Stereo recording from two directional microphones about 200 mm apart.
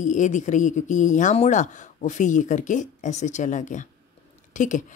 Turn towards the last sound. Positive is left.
turn(degrees=40)  # may be behind; listen again after turning